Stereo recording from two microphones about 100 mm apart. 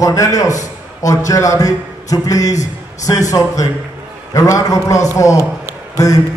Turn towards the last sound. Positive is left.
turn(degrees=35)  # may be behind; listen again after turning